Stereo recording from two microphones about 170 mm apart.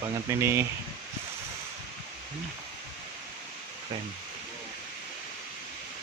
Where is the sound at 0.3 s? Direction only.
15° right (ahead or behind).